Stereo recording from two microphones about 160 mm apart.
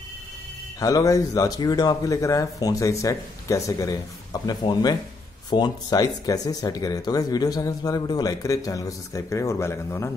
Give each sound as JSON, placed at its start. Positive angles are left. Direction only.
{"t": 0.7, "sound": "speech", "side_deg": 20}